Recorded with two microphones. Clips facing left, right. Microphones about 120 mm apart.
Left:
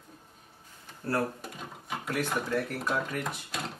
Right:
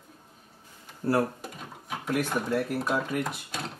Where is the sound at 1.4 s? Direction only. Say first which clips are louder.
Even; centre (ahead or behind).